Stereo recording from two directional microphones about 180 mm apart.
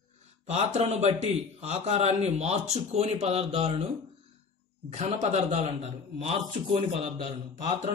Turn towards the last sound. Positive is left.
turn(degrees=-45)  # may be behind; listen again after turning